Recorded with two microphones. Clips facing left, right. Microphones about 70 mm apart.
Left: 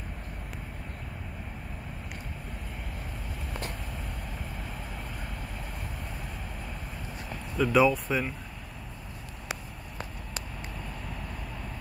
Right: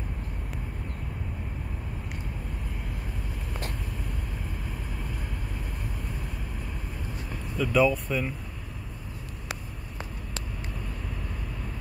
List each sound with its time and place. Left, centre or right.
7.5 s speech: centre